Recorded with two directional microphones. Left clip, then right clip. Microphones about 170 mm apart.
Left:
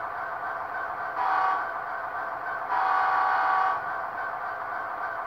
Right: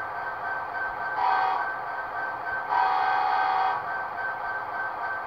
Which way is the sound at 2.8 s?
30° left (ahead or behind).